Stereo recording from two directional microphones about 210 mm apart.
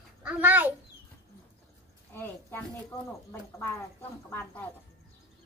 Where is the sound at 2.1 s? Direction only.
10° left (ahead or behind).